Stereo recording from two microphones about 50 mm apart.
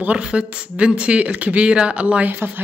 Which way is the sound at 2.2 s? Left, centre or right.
Right.